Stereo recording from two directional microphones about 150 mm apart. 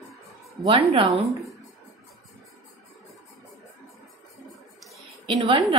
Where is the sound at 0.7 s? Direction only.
40° right (ahead or behind).